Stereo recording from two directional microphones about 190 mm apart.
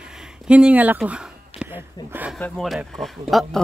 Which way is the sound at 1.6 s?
10° right (ahead or behind).